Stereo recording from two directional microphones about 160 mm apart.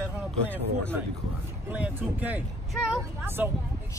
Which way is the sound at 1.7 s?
10° right (ahead or behind).